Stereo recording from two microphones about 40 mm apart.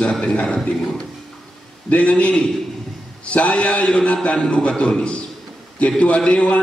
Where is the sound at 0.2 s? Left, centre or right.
Left.